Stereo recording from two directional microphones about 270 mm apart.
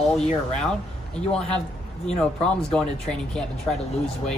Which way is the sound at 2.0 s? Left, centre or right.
Centre.